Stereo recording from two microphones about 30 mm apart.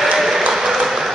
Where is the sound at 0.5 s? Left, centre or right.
Centre.